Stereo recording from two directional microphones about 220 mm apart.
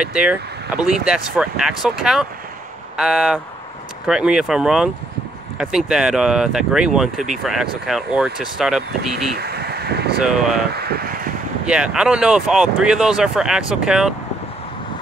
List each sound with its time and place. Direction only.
0.0 s speech: 5° right (ahead or behind)
9.4 s vehicle: 45° right (ahead or behind)
10.1 s speech: 5° right (ahead or behind)
10.7 s speech: 45° right (ahead or behind)
11.6 s speech: 5° right (ahead or behind)